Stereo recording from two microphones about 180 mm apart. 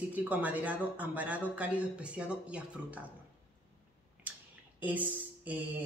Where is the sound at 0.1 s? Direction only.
10° right (ahead or behind).